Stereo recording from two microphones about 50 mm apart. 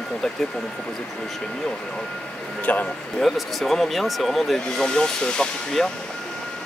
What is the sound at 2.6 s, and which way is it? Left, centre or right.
Speech, left.